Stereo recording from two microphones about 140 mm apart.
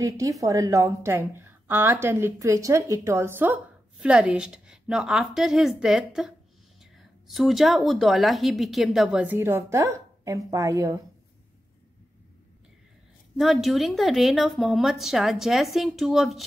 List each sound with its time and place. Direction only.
0.0 s a woman's voice: 25° right (ahead or behind)
13.4 s speech: centre (ahead or behind)